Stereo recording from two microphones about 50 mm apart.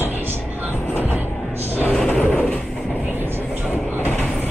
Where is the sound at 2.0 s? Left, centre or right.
Left.